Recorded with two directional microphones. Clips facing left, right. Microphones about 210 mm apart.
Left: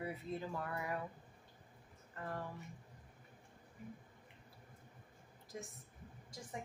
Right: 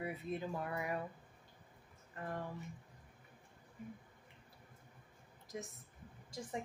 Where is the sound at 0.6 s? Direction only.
15° right (ahead or behind).